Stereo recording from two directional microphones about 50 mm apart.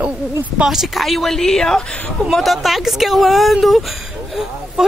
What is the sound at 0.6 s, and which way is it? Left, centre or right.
Speech, centre.